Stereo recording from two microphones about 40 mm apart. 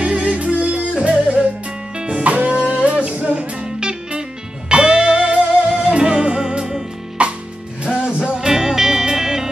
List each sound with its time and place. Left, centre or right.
0.0 s music: right
5.7 s music: centre